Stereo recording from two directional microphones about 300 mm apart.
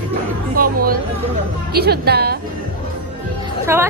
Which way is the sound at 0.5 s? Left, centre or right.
Right.